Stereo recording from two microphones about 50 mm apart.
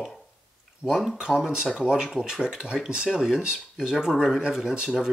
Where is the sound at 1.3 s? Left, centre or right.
Centre.